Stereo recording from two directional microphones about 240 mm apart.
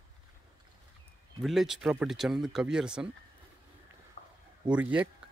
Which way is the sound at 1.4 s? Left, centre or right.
Centre.